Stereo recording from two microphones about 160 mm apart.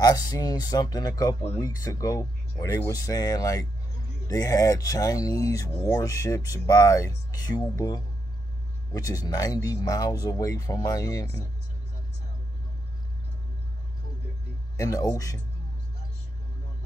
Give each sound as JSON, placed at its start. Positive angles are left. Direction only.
{"t": 0.0, "sound": "speech", "side_deg": 25}
{"t": 14.8, "sound": "speech", "side_deg": 20}